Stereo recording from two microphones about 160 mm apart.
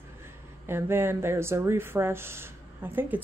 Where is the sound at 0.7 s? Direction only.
15° right (ahead or behind).